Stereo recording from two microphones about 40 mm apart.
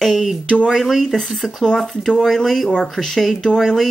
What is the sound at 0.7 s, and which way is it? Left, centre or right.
Speech, centre.